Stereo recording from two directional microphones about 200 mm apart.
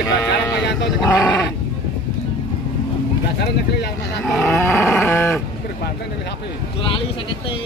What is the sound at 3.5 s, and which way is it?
Speech, 55° left (ahead or behind).